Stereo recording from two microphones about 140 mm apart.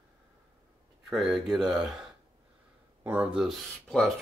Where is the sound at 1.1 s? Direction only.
Centre (ahead or behind).